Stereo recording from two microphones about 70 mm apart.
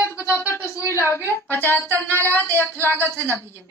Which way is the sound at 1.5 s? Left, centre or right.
Left.